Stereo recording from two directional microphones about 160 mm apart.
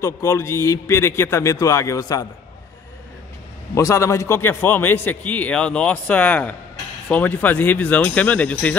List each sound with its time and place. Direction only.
0.0 s a man's voice: 15° left (ahead or behind)
3.7 s a man's voice: 20° left (ahead or behind)